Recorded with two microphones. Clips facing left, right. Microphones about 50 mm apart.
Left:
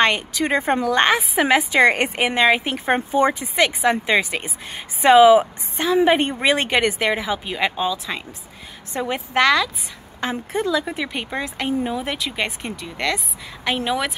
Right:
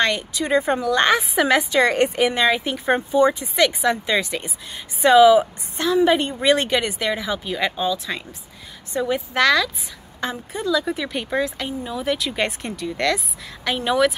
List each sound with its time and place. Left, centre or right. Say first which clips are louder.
0.4 s a woman's voice: right 1 dB; left
1.4 s a woman's voice: left 3 dB; left
6.8 s speech: left 4 dB; left
7.2 s speech: left 1 dB; left
8.9 s a woman's voice: even; left
10.3 s speech: left 1 dB; left
10.9 s a woman's voice: right 1 dB; left
11.4 s speech: left 4 dB; left
11.9 s a woman's voice: right 2 dB; left
12.2 s speech: right 1 dB; centre